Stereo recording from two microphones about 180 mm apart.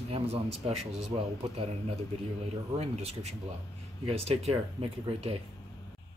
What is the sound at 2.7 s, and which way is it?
Speech, 35° right (ahead or behind).